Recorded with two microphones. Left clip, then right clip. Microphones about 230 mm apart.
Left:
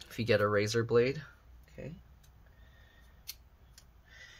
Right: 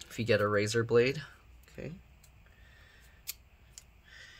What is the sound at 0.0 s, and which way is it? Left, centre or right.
Speech, centre.